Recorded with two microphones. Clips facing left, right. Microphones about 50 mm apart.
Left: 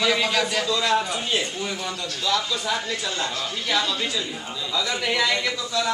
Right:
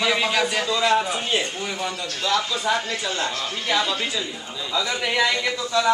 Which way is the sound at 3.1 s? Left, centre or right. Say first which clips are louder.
Right 2 dB; right.